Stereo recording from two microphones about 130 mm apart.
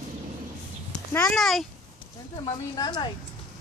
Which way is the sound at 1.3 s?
Centre (ahead or behind).